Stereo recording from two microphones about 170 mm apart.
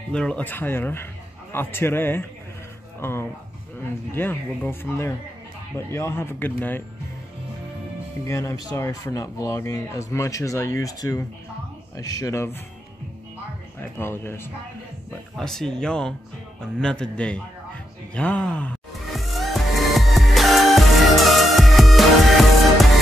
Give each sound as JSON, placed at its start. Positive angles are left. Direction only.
{"t": 0.1, "sound": "speech", "side_deg": 5}
{"t": 8.3, "sound": "speech", "side_deg": 20}
{"t": 13.7, "sound": "speech", "side_deg": 15}
{"t": 15.3, "sound": "a man's voice", "side_deg": 5}
{"t": 18.1, "sound": "music", "side_deg": 5}